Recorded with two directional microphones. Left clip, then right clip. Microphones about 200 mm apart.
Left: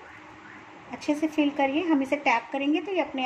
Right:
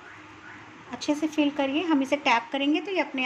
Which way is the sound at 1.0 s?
25° right (ahead or behind).